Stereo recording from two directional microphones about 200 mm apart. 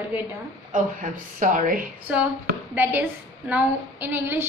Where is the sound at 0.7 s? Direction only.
40° right (ahead or behind).